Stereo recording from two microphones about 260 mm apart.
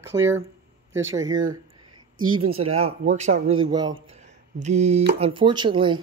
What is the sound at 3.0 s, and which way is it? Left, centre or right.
Speech, right.